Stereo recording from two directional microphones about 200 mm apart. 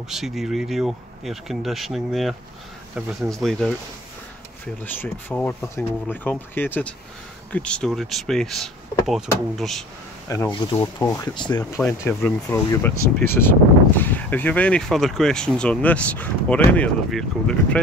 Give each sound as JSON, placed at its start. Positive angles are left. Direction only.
{"t": 0.1, "sound": "speech", "side_deg": 0}
{"t": 4.8, "sound": "speech", "side_deg": 10}
{"t": 10.2, "sound": "speech", "side_deg": 15}
{"t": 11.8, "sound": "speech", "side_deg": 10}